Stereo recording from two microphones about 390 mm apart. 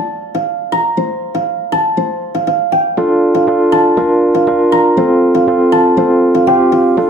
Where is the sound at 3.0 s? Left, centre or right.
Centre.